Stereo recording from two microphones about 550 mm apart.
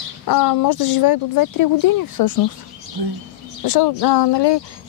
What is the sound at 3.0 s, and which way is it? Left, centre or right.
Speech, right.